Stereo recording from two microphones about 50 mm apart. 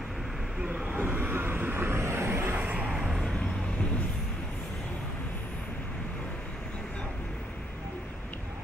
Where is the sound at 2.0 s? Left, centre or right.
Right.